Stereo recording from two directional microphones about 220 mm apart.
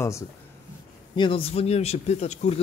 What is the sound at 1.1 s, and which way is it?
Speech, 20° left (ahead or behind).